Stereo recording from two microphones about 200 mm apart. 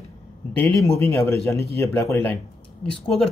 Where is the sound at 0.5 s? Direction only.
15° left (ahead or behind).